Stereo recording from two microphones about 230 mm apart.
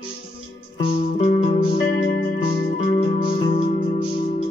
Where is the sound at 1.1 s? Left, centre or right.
Left.